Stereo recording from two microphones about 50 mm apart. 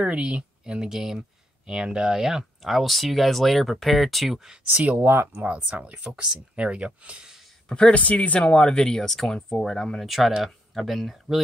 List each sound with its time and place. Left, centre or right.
0.0 s speech: right
4.9 s speech: right
5.4 s speech: right
7.6 s speech: left
10.0 s speech: centre